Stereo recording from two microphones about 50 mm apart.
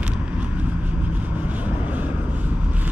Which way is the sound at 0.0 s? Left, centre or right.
Right.